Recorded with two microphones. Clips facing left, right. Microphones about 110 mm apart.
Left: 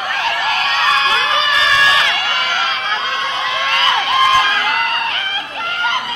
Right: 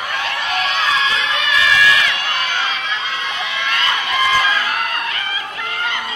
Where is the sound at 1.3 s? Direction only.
25° left (ahead or behind).